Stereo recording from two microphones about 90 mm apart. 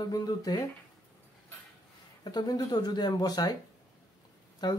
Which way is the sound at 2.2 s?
50° left (ahead or behind).